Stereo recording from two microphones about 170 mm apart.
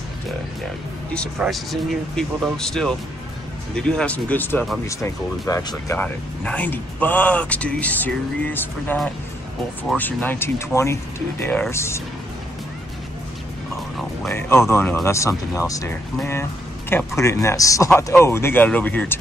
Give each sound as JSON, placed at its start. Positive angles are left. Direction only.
{"t": 1.4, "sound": "speech", "side_deg": 0}
{"t": 5.9, "sound": "speech", "side_deg": 10}
{"t": 14.3, "sound": "speech", "side_deg": 15}